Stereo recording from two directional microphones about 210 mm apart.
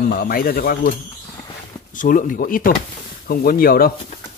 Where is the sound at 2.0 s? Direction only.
40° left (ahead or behind).